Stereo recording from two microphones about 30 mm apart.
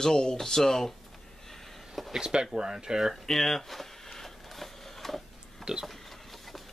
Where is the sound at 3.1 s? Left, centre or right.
Centre.